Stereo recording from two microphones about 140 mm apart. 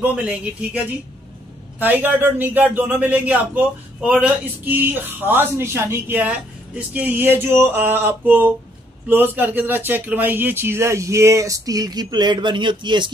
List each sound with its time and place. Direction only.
0.0 s a man's voice: 10° right (ahead or behind)
1.8 s a man's voice: 10° right (ahead or behind); by 13.1 s 35° right (ahead or behind)